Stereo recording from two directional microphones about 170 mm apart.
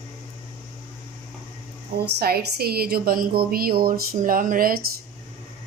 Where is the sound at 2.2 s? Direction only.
65° right (ahead or behind).